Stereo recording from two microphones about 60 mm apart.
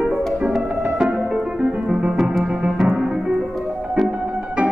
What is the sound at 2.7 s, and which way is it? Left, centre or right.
Music, centre.